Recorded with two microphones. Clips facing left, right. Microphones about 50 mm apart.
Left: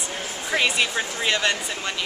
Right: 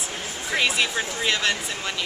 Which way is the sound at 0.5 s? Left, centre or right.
Centre.